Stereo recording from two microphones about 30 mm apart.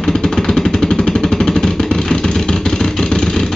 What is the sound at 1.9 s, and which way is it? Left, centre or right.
Vehicle, left.